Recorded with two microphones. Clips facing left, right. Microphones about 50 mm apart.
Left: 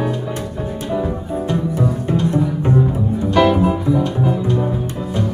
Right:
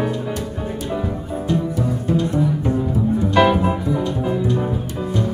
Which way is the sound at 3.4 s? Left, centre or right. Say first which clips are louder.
Left 2 dB; centre.